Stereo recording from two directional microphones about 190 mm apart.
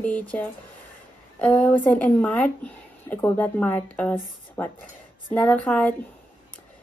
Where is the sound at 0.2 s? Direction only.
5° left (ahead or behind).